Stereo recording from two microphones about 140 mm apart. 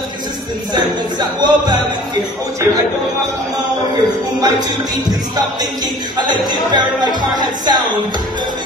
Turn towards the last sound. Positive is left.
turn(degrees=-30)  # may be behind; listen again after turning